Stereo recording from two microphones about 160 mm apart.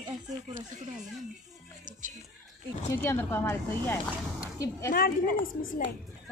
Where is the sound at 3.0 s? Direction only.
15° left (ahead or behind).